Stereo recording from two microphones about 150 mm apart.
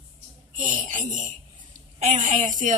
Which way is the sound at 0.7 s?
55° right (ahead or behind).